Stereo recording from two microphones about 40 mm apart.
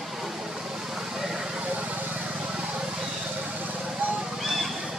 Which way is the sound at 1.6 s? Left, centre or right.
Right.